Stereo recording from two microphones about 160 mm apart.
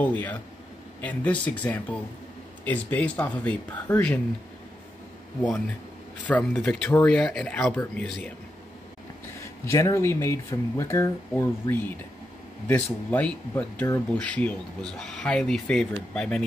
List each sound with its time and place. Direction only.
0.0 s speech: 10° left (ahead or behind)
6.2 s speech: 10° left (ahead or behind)
9.7 s speech: 20° left (ahead or behind)